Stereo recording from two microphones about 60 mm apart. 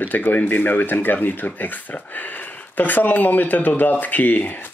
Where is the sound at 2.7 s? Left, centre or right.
Left.